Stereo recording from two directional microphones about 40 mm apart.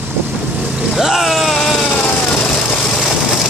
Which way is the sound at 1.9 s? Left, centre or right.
Left.